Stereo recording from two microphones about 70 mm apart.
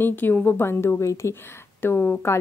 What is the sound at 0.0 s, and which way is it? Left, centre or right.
A woman's voice, left.